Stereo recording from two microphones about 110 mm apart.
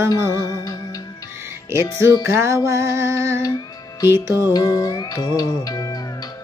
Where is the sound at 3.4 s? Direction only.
35° left (ahead or behind).